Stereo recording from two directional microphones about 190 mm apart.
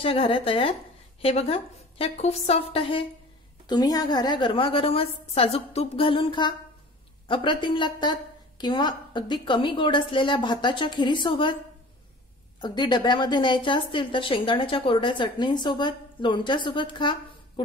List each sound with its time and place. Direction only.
0.0 s a woman's voice: 30° left (ahead or behind)
3.6 s a woman's voice: 20° left (ahead or behind)
12.5 s a woman's voice: 25° left (ahead or behind)